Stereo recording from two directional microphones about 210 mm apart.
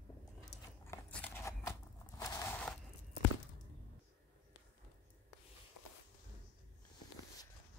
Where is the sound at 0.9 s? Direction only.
10° left (ahead or behind).